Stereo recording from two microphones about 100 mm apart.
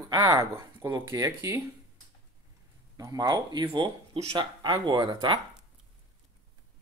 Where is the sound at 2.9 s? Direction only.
40° right (ahead or behind).